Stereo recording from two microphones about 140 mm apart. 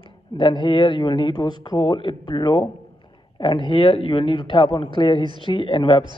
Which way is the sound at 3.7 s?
35° left (ahead or behind).